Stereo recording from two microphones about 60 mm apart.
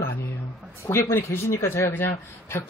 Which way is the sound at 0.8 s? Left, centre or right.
Left.